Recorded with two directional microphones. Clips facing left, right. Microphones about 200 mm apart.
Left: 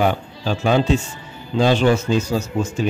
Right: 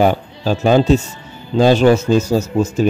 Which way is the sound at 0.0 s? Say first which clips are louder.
Right 5 dB; 40° right (ahead or behind).